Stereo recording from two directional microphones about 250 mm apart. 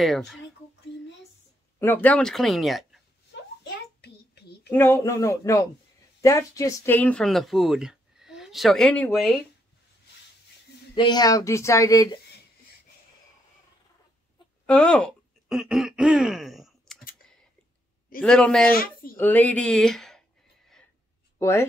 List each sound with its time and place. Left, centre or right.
0.0 s speech: centre
1.8 s speech: centre
3.6 s child singing: left
4.6 s speech: centre
11.0 s speech: centre
14.7 s speech: centre
18.2 s speech: centre
18.8 s speech: left
19.1 s speech: centre
21.4 s speech: centre